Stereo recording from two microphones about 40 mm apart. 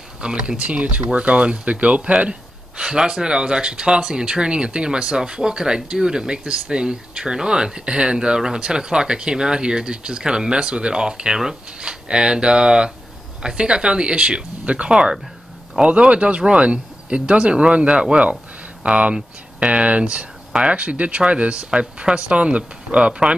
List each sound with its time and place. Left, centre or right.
0.2 s speech: right
2.8 s speech: centre
22.4 s speech: right